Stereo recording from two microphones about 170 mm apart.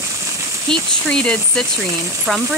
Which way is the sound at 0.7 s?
5° left (ahead or behind).